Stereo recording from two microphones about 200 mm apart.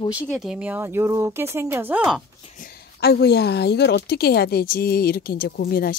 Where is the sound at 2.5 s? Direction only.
45° left (ahead or behind).